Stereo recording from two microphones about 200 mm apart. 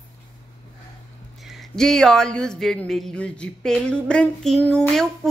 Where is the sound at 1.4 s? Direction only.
Centre (ahead or behind).